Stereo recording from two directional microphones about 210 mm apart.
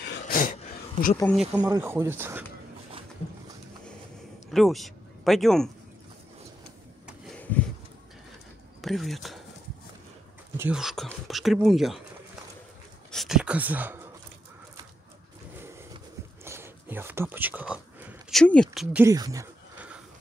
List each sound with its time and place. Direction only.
0.3 s a sound: 40° left (ahead or behind)
1.3 s speech: centre (ahead or behind)
1.7 s speech: 15° right (ahead or behind)
4.5 s speech: centre (ahead or behind)
7.2 s a sound: 5° left (ahead or behind)
8.8 s speech: centre (ahead or behind)
10.6 s speech: 5° right (ahead or behind)
13.1 s speech: centre (ahead or behind)
16.4 s whispering: 10° right (ahead or behind); by 18.9 s 5° left (ahead or behind)
18.9 s speech: 15° right (ahead or behind)